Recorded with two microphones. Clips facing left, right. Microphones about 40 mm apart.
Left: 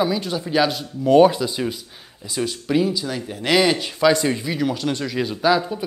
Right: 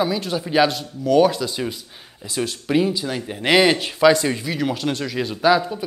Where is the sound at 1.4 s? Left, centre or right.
Centre.